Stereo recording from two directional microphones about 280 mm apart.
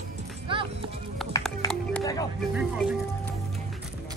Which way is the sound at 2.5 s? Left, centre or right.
Centre.